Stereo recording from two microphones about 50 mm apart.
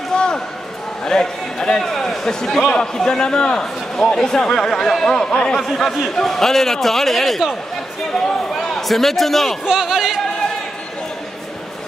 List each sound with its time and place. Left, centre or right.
0.1 s a sound: centre
1.0 s a man's voice: centre
9.7 s speech: centre